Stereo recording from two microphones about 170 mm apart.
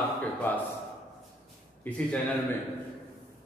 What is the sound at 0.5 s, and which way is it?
Speech, 10° left (ahead or behind).